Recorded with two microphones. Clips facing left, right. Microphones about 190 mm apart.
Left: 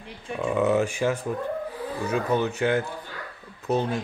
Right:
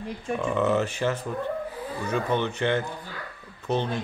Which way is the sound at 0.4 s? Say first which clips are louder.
Left 2 dB; 10° left (ahead or behind).